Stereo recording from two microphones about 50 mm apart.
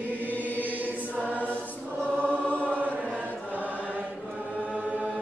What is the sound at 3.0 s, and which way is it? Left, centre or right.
Chant, right.